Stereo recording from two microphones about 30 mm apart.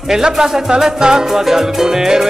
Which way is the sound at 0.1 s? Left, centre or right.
Centre.